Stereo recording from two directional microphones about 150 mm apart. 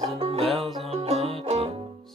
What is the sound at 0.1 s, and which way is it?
Music, 40° right (ahead or behind).